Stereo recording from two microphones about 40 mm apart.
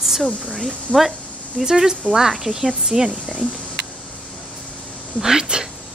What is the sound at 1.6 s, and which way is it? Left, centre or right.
A woman's voice, centre.